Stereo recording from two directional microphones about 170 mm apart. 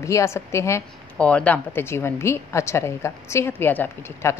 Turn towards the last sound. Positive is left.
turn(degrees=15)  # may be behind; listen again after turning